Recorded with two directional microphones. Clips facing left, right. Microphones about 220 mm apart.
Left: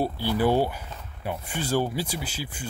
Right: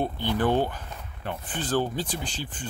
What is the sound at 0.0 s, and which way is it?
Speech, 10° left (ahead or behind).